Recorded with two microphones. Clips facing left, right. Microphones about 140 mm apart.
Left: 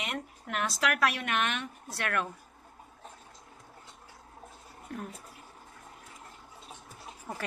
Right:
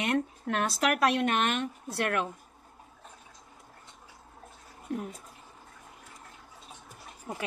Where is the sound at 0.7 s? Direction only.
35° right (ahead or behind).